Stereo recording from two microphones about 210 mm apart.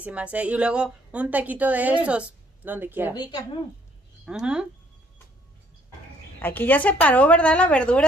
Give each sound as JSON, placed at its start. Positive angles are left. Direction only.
{"t": 0.0, "sound": "a woman's voice", "side_deg": -5}
{"t": 3.2, "sound": "a woman's voice", "side_deg": 20}
{"t": 4.3, "sound": "speech", "side_deg": -5}
{"t": 6.4, "sound": "a woman's voice", "side_deg": 10}